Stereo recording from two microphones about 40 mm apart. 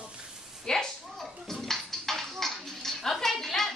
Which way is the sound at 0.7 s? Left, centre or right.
Centre.